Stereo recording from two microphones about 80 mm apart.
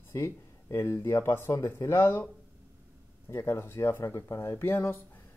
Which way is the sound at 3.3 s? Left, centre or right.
Left.